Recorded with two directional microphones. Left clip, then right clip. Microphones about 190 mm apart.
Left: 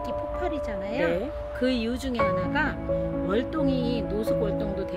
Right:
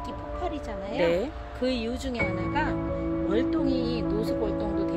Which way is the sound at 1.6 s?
30° left (ahead or behind).